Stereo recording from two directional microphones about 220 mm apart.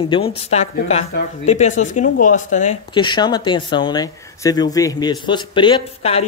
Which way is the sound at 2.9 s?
20° left (ahead or behind).